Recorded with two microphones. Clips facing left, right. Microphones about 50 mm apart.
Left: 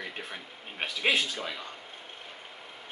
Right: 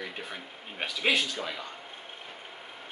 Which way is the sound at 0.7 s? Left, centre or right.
Centre.